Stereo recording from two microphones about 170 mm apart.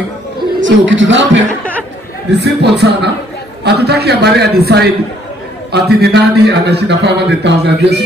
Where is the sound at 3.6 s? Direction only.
75° right (ahead or behind).